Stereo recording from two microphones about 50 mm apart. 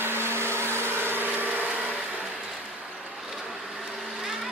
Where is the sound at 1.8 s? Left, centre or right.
Right.